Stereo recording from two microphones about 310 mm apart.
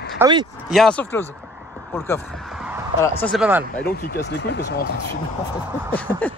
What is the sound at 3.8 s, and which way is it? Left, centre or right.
Speech, left.